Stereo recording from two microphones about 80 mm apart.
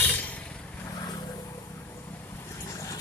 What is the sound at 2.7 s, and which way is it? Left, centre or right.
Boat, left.